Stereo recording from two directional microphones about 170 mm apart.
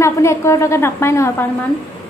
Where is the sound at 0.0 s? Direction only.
15° left (ahead or behind).